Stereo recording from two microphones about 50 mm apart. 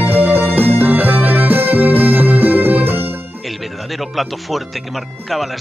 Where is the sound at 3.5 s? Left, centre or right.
Centre.